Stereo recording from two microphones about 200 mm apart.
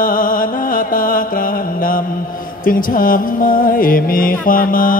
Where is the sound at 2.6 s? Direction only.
45° left (ahead or behind).